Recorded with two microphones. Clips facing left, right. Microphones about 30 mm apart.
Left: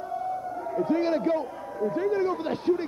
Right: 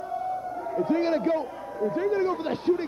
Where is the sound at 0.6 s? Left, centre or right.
Centre.